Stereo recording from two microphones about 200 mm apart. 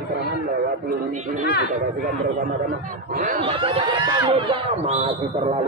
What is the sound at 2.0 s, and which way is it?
A man's voice, 45° right (ahead or behind).